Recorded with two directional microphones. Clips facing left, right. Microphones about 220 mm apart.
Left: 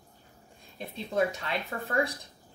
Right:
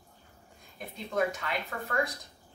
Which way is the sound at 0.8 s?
30° left (ahead or behind).